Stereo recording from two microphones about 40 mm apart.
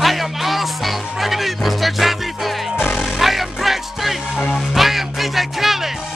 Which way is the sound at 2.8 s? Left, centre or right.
Left.